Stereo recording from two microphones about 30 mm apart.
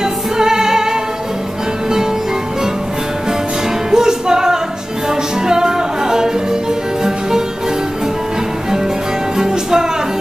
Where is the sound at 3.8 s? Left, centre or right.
Right.